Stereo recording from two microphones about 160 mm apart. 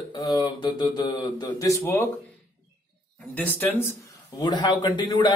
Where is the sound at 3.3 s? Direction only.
10° left (ahead or behind).